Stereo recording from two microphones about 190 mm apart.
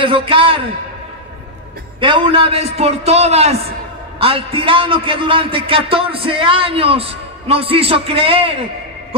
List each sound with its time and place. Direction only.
0.0 s a man's voice: 30° right (ahead or behind)
2.0 s a man's voice: 25° right (ahead or behind)